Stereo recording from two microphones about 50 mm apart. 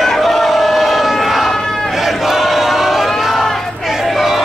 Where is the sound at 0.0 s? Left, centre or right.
Centre.